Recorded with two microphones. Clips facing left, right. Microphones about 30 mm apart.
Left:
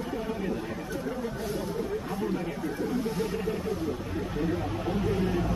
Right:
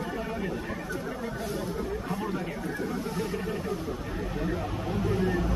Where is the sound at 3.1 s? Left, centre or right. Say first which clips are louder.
Left 1 dB; centre.